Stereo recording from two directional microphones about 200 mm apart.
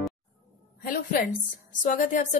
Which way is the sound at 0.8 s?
45° left (ahead or behind).